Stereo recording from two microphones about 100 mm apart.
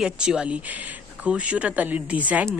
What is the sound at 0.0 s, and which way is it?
A woman's voice, 5° right (ahead or behind).